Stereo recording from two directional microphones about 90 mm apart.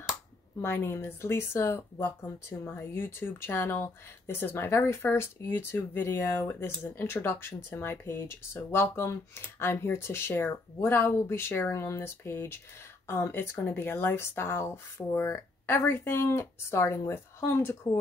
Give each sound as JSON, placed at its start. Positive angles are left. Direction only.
{"t": 0.6, "sound": "speech", "side_deg": 25}